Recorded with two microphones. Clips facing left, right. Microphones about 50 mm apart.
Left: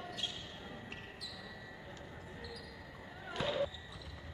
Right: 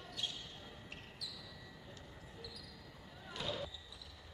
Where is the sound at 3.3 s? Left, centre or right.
Left.